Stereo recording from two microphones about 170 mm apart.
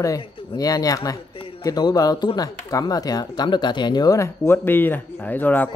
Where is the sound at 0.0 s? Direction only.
20° left (ahead or behind).